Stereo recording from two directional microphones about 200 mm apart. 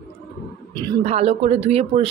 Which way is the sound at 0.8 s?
30° right (ahead or behind).